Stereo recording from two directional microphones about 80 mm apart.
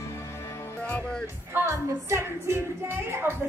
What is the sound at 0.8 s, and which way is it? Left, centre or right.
Music, centre.